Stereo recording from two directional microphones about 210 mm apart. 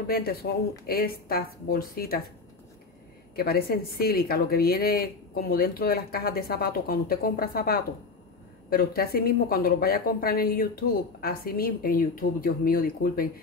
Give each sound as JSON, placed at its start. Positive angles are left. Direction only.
{"t": 0.1, "sound": "a woman's voice", "side_deg": 45}
{"t": 3.3, "sound": "a woman's voice", "side_deg": 45}